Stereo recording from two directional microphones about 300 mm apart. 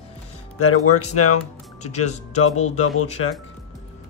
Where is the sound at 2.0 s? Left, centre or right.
Left.